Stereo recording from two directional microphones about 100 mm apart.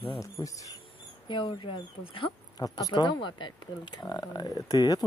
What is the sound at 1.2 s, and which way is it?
Speech, 55° left (ahead or behind).